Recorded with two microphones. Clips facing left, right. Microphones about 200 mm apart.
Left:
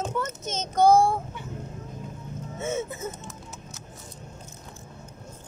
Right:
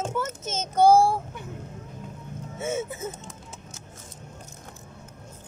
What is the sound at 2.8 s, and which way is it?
Speech, 30° right (ahead or behind).